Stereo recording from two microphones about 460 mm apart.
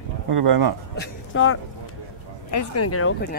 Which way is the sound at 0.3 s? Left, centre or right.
Right.